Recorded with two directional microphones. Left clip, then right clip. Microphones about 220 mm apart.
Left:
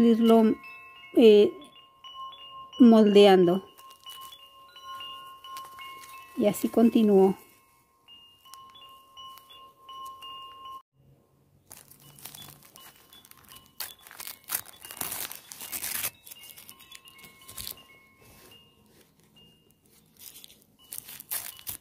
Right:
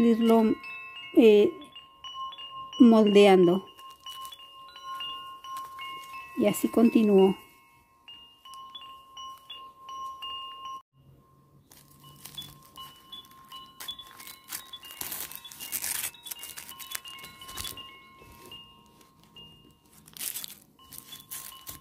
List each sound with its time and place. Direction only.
0.0 s chime: 10° left (ahead or behind)
0.6 s chime: 35° right (ahead or behind)
1.1 s chime: 5° left (ahead or behind)
1.7 s wind chime: 35° right (ahead or behind)
2.8 s speech: 5° left (ahead or behind)
4.3 s wind chime: 35° right (ahead or behind)
6.4 s speech: centre (ahead or behind)
9.8 s chime: 35° right (ahead or behind)
11.7 s a sound: 20° left (ahead or behind)
13.7 s a sound: 20° left (ahead or behind)
21.1 s a sound: 15° left (ahead or behind)